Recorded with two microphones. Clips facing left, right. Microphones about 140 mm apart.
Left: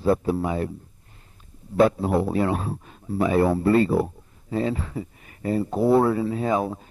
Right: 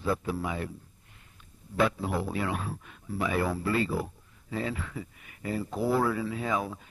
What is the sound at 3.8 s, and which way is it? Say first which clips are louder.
Speech: left 9 dB; 60° left (ahead or behind).